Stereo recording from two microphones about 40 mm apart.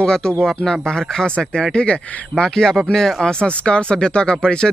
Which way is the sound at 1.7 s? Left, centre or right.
Left.